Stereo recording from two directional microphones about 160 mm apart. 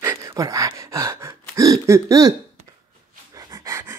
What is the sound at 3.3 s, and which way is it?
Pant, 20° right (ahead or behind).